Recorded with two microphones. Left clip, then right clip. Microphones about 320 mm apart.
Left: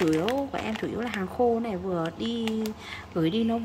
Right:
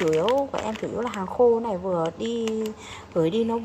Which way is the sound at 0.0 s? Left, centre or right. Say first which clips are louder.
Right 4 dB; centre.